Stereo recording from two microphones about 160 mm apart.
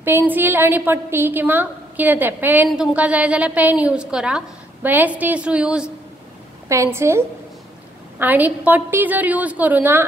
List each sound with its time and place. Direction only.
0.0 s a woman's voice: 15° right (ahead or behind)
6.7 s a woman's voice: 15° right (ahead or behind)